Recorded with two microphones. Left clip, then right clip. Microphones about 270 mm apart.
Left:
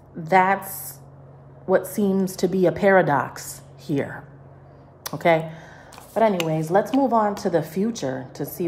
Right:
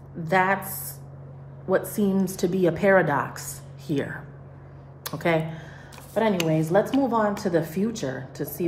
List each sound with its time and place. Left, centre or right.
0.3 s speech: left
1.7 s speech: left
5.0 s speech: left